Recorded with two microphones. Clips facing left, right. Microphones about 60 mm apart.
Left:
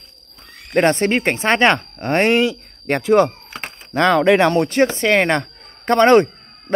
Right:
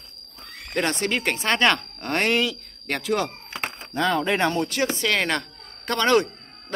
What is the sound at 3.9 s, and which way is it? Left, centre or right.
Speech, left.